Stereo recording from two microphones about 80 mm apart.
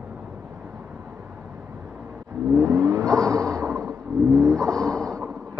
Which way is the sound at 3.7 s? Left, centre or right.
Right.